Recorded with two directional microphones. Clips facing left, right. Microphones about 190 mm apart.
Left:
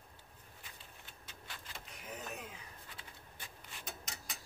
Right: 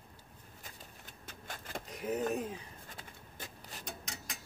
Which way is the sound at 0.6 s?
45° right (ahead or behind).